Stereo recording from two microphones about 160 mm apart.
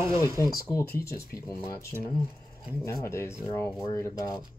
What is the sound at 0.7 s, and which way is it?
Speech, 20° left (ahead or behind).